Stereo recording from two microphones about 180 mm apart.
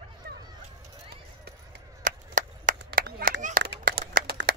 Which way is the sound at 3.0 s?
65° right (ahead or behind).